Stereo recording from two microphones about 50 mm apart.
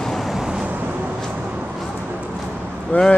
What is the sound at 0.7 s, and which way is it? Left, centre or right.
Vehicle, right.